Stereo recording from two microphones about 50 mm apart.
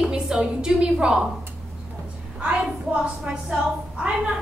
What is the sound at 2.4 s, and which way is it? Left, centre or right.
A woman's voice, right.